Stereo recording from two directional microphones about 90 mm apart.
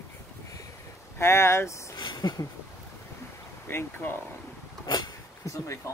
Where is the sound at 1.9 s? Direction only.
60° left (ahead or behind).